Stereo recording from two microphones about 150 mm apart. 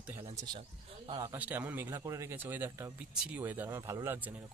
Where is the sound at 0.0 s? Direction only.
15° right (ahead or behind).